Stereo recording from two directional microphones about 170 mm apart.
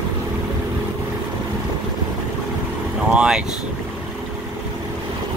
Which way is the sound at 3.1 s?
5° right (ahead or behind).